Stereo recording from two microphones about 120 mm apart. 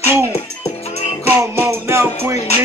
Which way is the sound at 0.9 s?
60° left (ahead or behind).